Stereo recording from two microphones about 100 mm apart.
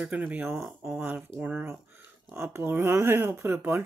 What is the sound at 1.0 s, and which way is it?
Speech, 15° right (ahead or behind).